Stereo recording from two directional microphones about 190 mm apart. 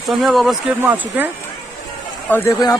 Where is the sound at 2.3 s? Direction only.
15° left (ahead or behind).